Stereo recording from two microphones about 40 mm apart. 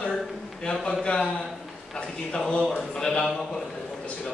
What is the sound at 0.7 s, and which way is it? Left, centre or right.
Speech, left.